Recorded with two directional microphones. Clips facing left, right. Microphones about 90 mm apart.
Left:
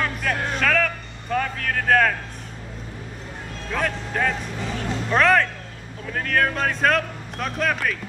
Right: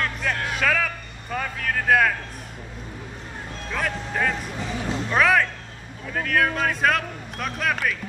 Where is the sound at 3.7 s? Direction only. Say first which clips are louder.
Left 2 dB; centre (ahead or behind).